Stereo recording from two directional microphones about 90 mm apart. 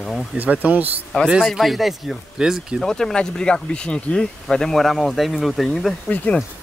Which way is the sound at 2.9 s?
5° left (ahead or behind).